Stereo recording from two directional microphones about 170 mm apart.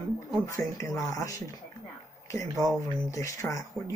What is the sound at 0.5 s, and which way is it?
Speech, 20° left (ahead or behind).